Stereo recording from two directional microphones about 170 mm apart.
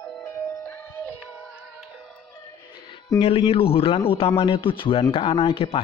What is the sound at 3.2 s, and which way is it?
A man's voice, 35° left (ahead or behind).